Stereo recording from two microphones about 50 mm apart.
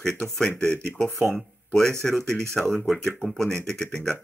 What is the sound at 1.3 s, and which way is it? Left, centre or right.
Speech, centre.